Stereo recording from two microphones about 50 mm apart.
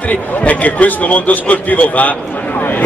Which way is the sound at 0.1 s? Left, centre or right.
Left.